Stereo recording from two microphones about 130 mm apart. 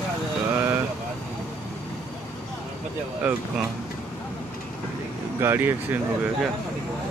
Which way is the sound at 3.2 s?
10° right (ahead or behind).